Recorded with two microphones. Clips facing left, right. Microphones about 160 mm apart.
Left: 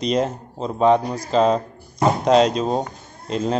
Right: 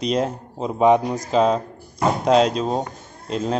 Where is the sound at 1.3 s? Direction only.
5° right (ahead or behind).